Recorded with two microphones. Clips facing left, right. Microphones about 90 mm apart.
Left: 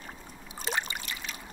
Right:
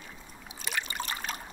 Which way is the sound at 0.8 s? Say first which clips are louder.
Right 4 dB; 40° right (ahead or behind).